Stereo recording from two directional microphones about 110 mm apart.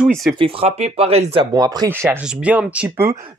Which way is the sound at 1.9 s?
15° right (ahead or behind).